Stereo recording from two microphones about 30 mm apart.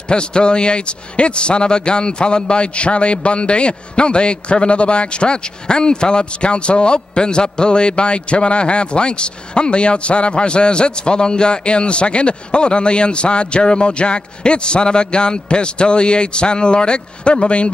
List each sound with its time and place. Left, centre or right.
0.1 s a man's voice: left